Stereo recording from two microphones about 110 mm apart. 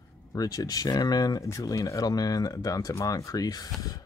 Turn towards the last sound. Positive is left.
turn(degrees=35)  # may be behind; listen again after turning